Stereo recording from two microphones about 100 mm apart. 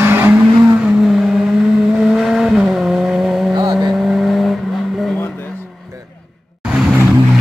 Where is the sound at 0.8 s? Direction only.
5° right (ahead or behind).